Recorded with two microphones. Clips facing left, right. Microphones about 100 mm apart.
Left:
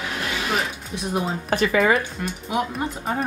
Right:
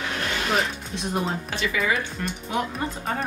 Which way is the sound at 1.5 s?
45° left (ahead or behind).